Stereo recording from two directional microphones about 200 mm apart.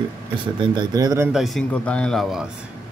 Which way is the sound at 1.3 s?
Centre (ahead or behind).